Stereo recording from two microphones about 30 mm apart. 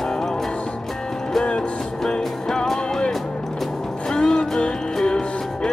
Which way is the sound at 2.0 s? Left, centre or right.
Left.